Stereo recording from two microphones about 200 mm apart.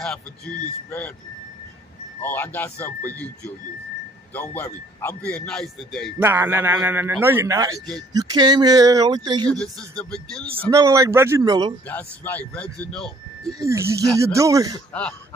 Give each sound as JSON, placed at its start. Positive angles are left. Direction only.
{"t": 0.0, "sound": "a man's voice", "side_deg": 5}
{"t": 2.2, "sound": "a man's voice", "side_deg": 10}
{"t": 6.2, "sound": "a man's voice", "side_deg": -10}
{"t": 9.5, "sound": "a man's voice", "side_deg": 5}
{"t": 10.7, "sound": "a man's voice", "side_deg": -15}
{"t": 11.9, "sound": "a man's voice", "side_deg": 10}
{"t": 13.6, "sound": "a man's voice", "side_deg": -15}
{"t": 14.9, "sound": "speech", "side_deg": 5}